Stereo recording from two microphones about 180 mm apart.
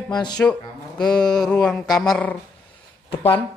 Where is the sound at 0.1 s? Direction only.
20° left (ahead or behind).